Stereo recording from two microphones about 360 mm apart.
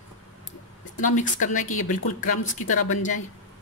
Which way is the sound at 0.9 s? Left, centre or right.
Left.